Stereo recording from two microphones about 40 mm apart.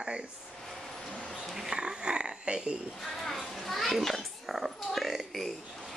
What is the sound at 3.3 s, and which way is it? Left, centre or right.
Children playing, centre.